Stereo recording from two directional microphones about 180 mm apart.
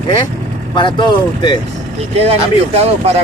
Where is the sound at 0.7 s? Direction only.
25° left (ahead or behind).